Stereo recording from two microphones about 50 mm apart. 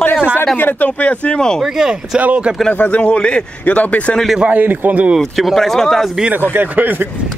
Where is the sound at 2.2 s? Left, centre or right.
Right.